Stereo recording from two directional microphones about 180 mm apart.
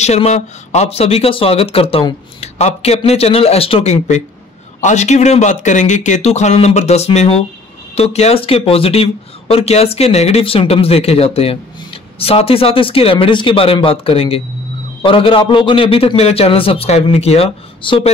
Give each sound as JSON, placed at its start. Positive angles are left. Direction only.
{"t": 0.0, "sound": "speech", "side_deg": 40}